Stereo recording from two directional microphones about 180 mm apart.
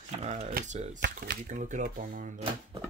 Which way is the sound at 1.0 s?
65° right (ahead or behind).